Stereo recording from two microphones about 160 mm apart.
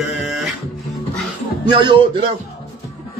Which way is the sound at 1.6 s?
30° right (ahead or behind).